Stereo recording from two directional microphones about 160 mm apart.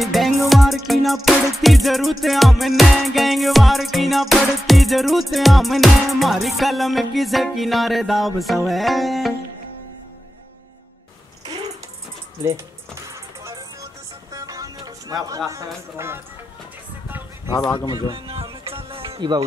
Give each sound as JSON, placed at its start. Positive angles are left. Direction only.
{"t": 0.0, "sound": "music", "side_deg": 0}
{"t": 14.3, "sound": "music", "side_deg": -25}
{"t": 18.1, "sound": "music", "side_deg": -35}